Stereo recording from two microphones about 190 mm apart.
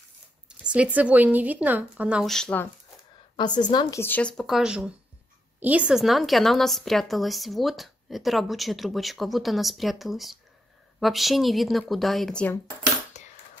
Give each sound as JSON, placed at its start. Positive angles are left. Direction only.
{"t": 0.5, "sound": "speech", "side_deg": -5}
{"t": 3.3, "sound": "a woman's voice", "side_deg": 25}
{"t": 4.0, "sound": "a woman's voice", "side_deg": 10}
{"t": 13.2, "sound": "a sound", "side_deg": 40}